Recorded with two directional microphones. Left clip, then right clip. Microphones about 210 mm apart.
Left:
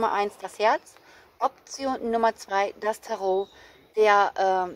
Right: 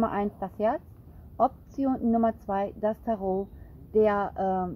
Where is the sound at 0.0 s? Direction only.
20° left (ahead or behind).